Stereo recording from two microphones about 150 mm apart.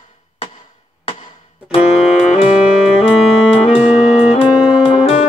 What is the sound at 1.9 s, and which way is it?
Music, 5° right (ahead or behind).